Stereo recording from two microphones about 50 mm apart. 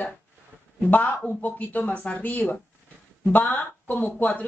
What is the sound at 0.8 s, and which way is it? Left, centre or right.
Speech, left.